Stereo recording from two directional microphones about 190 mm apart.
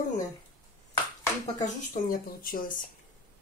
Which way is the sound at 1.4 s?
40° left (ahead or behind).